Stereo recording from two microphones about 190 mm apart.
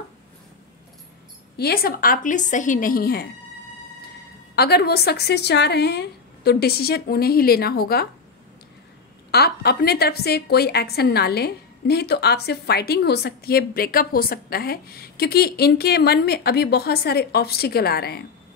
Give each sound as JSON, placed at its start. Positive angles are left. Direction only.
{"t": 1.6, "sound": "a woman's voice", "side_deg": 55}
{"t": 4.6, "sound": "a woman's voice", "side_deg": 55}
{"t": 9.3, "sound": "a woman's voice", "side_deg": 55}